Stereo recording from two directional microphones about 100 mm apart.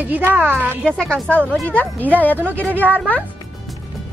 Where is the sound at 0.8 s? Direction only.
10° left (ahead or behind).